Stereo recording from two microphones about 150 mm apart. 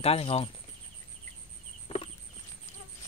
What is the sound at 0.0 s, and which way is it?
Speech, 40° left (ahead or behind).